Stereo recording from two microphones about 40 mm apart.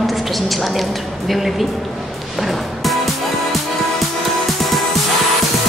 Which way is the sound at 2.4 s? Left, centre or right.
Centre.